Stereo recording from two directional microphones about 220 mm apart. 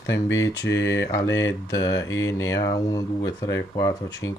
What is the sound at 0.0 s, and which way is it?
Mantra, 55° left (ahead or behind).